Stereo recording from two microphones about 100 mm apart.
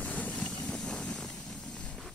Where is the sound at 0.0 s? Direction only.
15° left (ahead or behind).